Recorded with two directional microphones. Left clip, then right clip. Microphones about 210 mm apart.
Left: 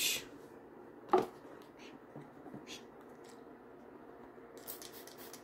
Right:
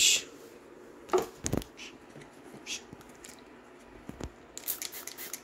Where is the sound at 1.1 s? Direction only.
30° left (ahead or behind).